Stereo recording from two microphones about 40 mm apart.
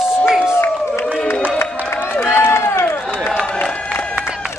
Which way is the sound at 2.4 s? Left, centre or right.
Left.